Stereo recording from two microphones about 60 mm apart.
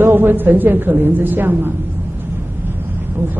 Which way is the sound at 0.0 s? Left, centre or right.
Right.